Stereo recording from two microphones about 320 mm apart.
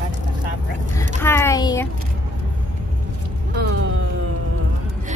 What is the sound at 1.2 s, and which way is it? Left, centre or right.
Speech, centre.